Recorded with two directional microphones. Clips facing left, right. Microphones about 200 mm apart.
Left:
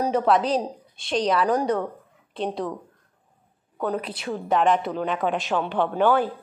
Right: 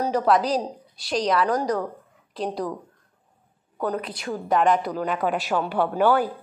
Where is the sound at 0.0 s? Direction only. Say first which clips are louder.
Even; centre (ahead or behind).